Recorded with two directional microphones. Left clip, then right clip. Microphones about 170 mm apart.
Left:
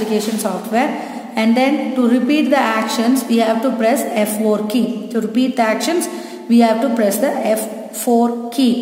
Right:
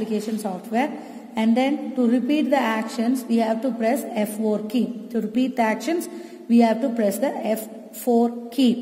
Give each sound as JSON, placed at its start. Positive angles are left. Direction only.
{"t": 0.7, "sound": "a woman's voice", "side_deg": -30}